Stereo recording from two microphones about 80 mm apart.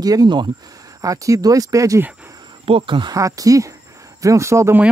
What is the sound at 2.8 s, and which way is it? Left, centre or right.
Speech, right.